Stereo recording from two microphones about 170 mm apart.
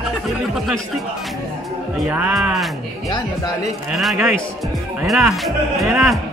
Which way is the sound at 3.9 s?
Centre (ahead or behind).